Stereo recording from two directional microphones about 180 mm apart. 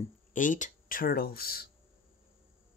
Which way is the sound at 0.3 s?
45° left (ahead or behind).